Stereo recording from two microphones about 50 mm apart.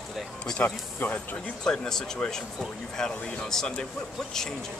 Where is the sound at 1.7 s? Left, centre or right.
Centre.